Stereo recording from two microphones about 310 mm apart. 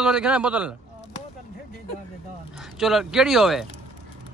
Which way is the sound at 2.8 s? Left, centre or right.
Centre.